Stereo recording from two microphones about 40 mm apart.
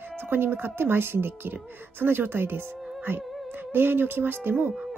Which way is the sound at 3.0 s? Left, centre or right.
Right.